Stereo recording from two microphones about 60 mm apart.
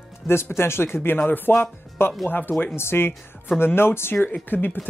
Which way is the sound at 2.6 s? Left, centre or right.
Left.